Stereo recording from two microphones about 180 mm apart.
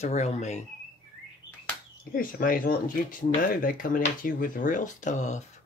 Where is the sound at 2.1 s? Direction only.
50° left (ahead or behind).